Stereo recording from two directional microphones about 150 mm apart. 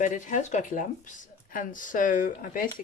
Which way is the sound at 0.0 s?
55° left (ahead or behind).